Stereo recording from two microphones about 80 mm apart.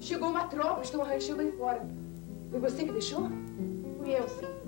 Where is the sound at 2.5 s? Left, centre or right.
Centre.